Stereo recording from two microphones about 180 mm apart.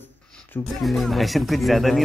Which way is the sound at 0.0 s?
10° left (ahead or behind).